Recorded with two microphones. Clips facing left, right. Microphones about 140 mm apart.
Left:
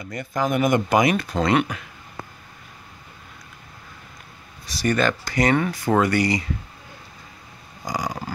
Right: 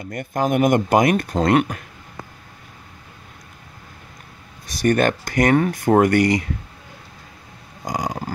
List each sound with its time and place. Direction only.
0.1 s speech: 55° right (ahead or behind)
4.6 s speech: 50° right (ahead or behind)
7.8 s a sound: 55° right (ahead or behind)